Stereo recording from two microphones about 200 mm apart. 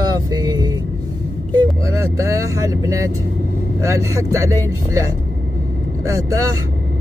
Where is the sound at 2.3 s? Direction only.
15° right (ahead or behind).